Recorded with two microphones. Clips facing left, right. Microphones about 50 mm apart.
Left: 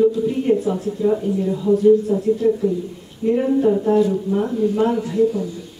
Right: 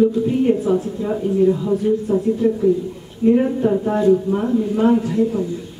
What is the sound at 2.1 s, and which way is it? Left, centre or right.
Speech, right.